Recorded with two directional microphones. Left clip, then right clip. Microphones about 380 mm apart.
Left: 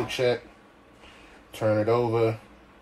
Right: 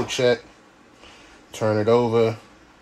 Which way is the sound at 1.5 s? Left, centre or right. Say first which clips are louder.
Right 4 dB; right.